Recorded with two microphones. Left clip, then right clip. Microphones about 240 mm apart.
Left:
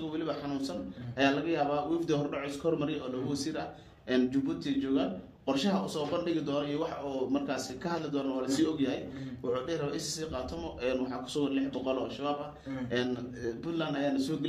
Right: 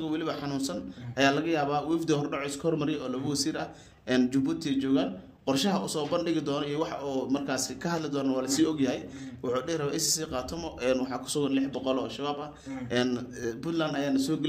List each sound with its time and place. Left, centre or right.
0.1 s a man's voice: right